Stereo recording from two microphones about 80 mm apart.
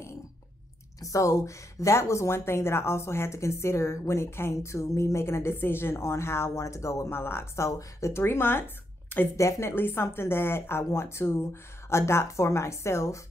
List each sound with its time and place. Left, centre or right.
1.0 s speech: left